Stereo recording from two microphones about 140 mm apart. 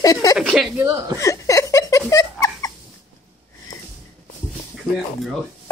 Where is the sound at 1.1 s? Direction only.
20° left (ahead or behind).